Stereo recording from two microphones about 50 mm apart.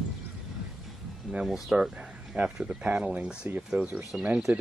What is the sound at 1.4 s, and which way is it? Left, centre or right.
Speech, centre.